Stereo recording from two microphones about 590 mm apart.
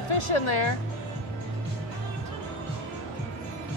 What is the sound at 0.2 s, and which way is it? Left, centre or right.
Speech, left.